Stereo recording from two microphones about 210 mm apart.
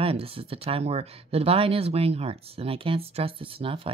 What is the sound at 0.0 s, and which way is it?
Speech, 25° right (ahead or behind).